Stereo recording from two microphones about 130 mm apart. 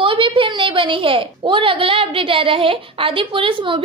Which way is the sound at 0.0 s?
40° right (ahead or behind).